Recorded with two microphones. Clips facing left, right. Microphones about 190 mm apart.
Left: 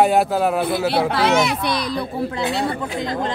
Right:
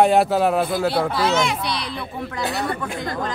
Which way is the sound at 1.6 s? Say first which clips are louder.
Left 5 dB; 45° left (ahead or behind).